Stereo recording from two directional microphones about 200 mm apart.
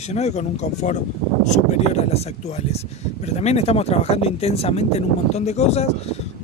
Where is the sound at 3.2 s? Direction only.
35° left (ahead or behind).